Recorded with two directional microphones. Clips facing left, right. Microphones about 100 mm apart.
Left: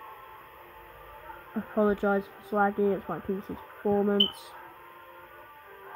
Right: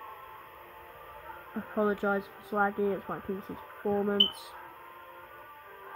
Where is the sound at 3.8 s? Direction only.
30° left (ahead or behind).